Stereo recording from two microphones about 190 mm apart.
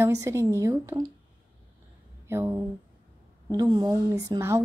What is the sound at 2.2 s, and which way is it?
Speech, 15° right (ahead or behind).